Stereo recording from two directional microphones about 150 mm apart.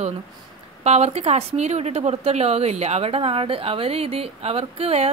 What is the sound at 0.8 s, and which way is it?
A woman's voice, 45° right (ahead or behind).